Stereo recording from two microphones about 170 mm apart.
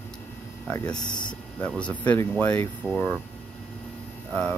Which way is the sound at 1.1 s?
25° left (ahead or behind).